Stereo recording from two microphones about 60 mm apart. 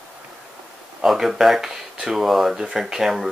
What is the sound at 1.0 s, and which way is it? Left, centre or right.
Speech, centre.